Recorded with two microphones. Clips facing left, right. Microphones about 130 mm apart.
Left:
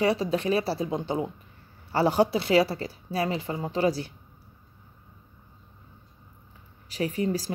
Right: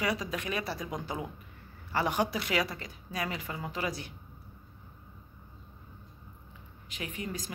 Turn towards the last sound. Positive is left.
turn(degrees=35)  # may be behind; listen again after turning